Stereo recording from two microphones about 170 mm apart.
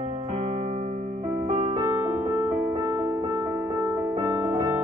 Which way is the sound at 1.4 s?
35° right (ahead or behind).